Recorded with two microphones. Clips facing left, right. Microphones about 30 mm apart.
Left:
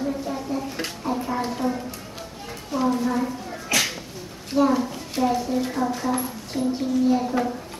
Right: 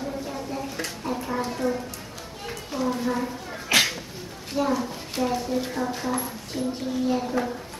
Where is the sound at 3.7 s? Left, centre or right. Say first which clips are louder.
Right 2 dB; right.